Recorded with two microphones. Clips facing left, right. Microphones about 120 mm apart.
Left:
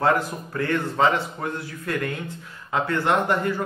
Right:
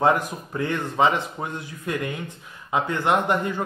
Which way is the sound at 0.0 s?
20° right (ahead or behind).